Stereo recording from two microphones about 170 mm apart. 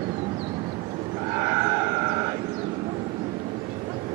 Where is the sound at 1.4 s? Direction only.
20° right (ahead or behind).